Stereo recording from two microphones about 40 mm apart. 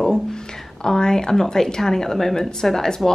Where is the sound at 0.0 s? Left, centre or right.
Centre.